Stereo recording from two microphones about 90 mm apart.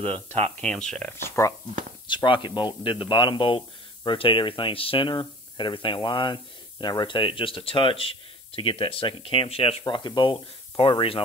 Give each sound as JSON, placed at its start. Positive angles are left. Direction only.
{"t": 0.0, "sound": "speech", "side_deg": -90}
{"t": 0.6, "sound": "speech", "side_deg": 10}
{"t": 1.1, "sound": "speech", "side_deg": 30}
{"t": 2.0, "sound": "speech", "side_deg": 65}
{"t": 9.8, "sound": "speech", "side_deg": 55}